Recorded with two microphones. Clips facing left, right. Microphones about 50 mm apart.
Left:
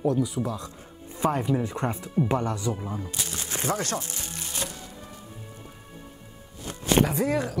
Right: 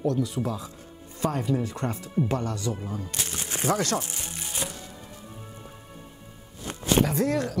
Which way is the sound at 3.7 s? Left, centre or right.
Right.